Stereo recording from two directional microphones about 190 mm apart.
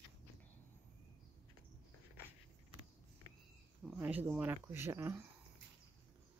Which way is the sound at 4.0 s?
10° right (ahead or behind).